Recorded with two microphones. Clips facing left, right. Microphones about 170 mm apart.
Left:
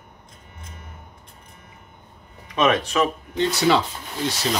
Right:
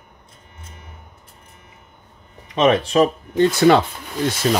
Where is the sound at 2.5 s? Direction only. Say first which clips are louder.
Right 4 dB; 30° right (ahead or behind).